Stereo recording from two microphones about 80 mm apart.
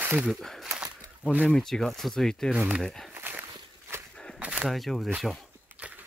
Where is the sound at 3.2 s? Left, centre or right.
Right.